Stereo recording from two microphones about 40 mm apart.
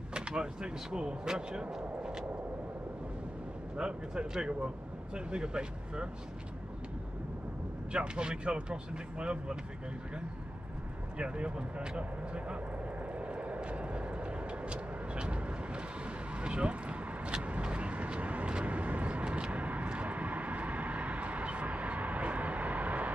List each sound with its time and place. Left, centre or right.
0.3 s speech: centre
3.7 s speech: right
7.9 s speech: right
11.1 s speech: right
12.0 s vehicle: right
18.7 s vehicle: right